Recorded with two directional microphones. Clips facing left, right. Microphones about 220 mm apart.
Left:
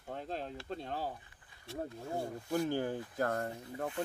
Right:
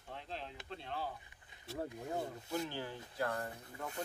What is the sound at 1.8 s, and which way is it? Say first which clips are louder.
Speech: left 1 dB; 15° right (ahead or behind).